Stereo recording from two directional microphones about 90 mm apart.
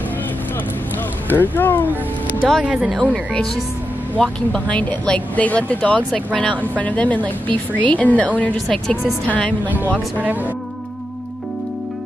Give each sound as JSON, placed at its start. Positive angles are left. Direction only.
{"t": 1.3, "sound": "speech", "side_deg": 20}
{"t": 2.6, "sound": "speech", "side_deg": -5}
{"t": 4.2, "sound": "speech", "side_deg": 10}
{"t": 8.5, "sound": "speech", "side_deg": 0}
{"t": 9.7, "sound": "speech", "side_deg": -20}